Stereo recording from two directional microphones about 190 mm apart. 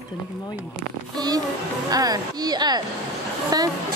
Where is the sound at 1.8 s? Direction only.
20° right (ahead or behind).